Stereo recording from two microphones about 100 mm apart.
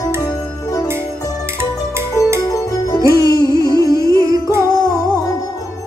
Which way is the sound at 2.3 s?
35° left (ahead or behind).